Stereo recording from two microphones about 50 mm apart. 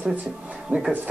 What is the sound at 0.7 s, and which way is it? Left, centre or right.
Speech, right.